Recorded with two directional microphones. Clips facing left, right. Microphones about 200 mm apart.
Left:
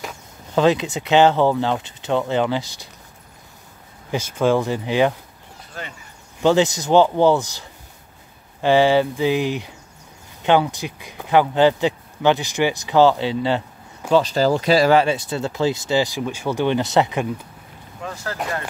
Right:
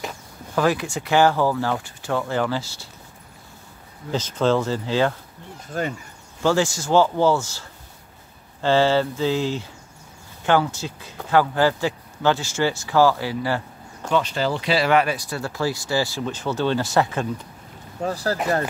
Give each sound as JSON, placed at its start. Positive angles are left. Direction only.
{"t": 0.6, "sound": "speech", "side_deg": 20}
{"t": 4.1, "sound": "speech", "side_deg": 10}
{"t": 5.7, "sound": "speech", "side_deg": -45}
{"t": 6.4, "sound": "speech", "side_deg": 20}
{"t": 14.1, "sound": "speech", "side_deg": 35}
{"t": 15.0, "sound": "speech", "side_deg": 25}
{"t": 18.0, "sound": "speech", "side_deg": -35}